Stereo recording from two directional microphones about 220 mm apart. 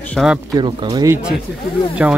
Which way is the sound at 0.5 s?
20° right (ahead or behind).